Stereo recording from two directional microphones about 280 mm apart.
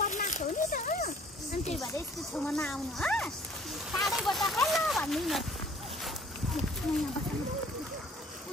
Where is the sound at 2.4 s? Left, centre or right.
Centre.